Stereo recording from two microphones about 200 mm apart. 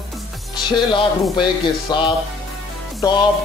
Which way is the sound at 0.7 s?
20° left (ahead or behind).